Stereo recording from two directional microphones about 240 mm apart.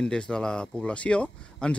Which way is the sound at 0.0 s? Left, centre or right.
Centre.